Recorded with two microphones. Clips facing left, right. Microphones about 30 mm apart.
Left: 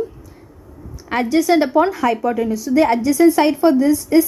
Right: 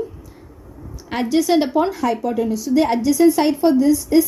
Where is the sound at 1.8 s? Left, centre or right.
Centre.